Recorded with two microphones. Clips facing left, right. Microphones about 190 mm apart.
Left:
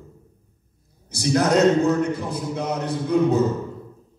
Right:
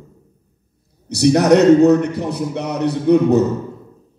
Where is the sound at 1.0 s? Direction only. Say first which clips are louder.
Right 7 dB; 70° right (ahead or behind).